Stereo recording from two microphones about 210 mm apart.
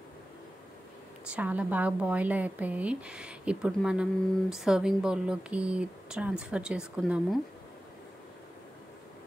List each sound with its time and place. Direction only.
1.3 s a woman's voice: 5° right (ahead or behind)